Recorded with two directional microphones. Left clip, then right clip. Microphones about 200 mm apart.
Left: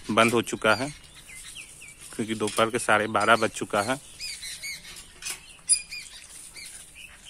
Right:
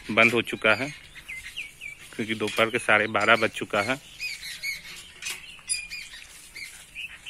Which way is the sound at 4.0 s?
55° left (ahead or behind).